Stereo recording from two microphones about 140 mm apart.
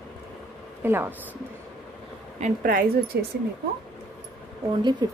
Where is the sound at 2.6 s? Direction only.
90° right.